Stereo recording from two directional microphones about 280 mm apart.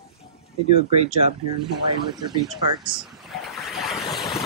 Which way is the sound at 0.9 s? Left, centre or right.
Right.